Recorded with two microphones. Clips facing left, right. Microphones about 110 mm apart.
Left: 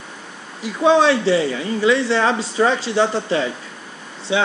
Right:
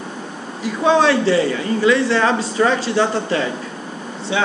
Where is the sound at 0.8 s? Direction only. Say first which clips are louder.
Even; 20° left (ahead or behind).